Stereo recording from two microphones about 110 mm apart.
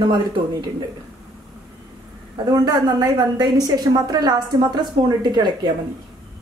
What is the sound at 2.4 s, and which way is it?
A woman's voice, 35° right (ahead or behind).